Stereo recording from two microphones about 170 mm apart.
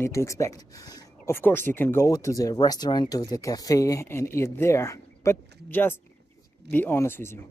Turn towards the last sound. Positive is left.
turn(degrees=15)  # may be behind; listen again after turning